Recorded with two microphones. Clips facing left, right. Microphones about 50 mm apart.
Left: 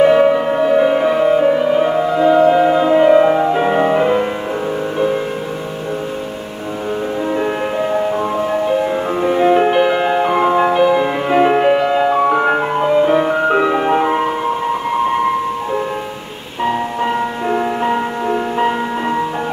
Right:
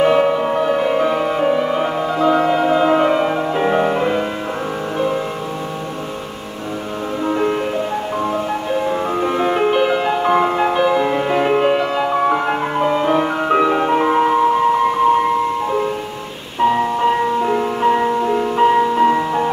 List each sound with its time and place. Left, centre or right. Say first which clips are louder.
0.0 s music: left 3 dB; centre
1.4 s music: left 3 dB; centre
9.1 s music: left 7 dB; centre
9.9 s music: left 3 dB; left
10.2 s music: left 1 dB; centre
17.0 s music: right 2 dB; centre